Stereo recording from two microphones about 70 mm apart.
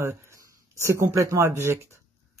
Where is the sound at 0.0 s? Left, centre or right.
Right.